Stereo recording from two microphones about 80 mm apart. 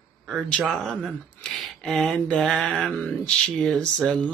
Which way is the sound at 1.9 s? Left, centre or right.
Centre.